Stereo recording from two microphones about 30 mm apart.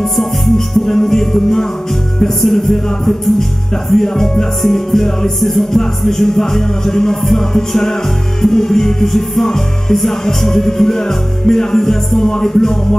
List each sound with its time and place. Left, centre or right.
0.0 s music: centre